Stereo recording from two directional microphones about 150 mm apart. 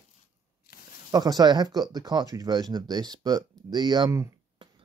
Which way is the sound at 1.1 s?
25° right (ahead or behind).